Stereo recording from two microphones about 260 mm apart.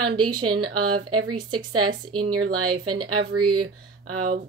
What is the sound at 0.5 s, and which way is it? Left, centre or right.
Speech, right.